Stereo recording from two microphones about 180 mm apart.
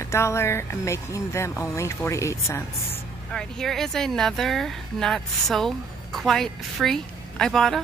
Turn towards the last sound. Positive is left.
turn(degrees=0)  # may be behind; listen again after turning